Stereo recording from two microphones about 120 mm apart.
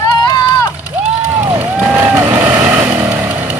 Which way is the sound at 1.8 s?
15° right (ahead or behind).